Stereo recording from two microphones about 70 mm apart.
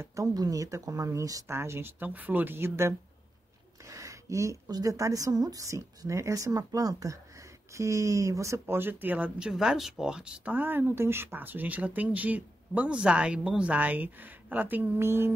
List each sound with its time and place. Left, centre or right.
0.0 s speech: right
0.3 s speech: right
1.5 s speech: right
3.8 s a sound: right
4.6 s speech: right
7.7 s speech: right
9.4 s speech: centre; by 15.3 s right